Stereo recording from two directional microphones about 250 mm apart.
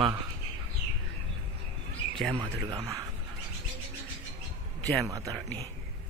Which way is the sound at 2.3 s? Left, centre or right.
Centre.